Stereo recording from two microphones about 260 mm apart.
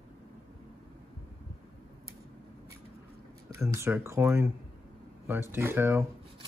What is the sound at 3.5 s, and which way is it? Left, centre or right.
Speech, centre.